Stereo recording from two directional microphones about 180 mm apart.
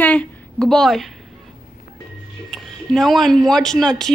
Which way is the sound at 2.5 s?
Centre (ahead or behind).